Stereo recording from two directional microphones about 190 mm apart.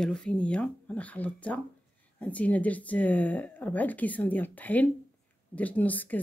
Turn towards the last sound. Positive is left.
turn(degrees=10)  # may be behind; listen again after turning